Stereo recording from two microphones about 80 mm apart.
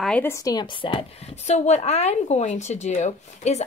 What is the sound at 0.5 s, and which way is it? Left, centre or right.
Speech, left.